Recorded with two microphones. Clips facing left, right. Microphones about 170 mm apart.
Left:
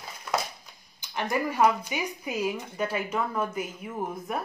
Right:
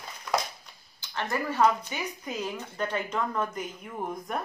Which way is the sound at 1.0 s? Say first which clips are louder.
Left 3 dB; 15° left (ahead or behind).